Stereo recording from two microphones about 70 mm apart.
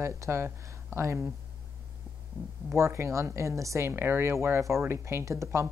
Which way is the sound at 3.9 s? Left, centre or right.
Right.